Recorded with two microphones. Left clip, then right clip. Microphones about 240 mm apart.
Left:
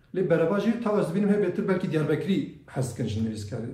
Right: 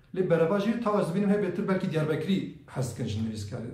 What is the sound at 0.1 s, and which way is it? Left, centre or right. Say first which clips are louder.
A man's voice: left 1 dB; right.